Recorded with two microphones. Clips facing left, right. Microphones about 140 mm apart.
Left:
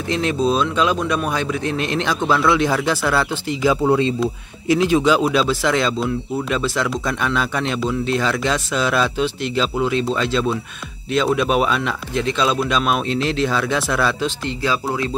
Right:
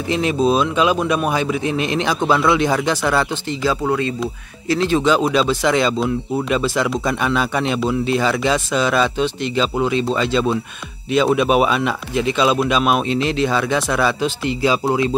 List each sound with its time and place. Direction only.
0.1 s speech: 5° right (ahead or behind)
3.6 s speech: 20° left (ahead or behind)
4.7 s speech: 10° left (ahead or behind)
14.6 s speech: 20° right (ahead or behind)